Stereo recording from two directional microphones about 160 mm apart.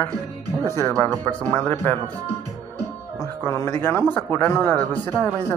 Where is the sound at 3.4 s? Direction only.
15° left (ahead or behind).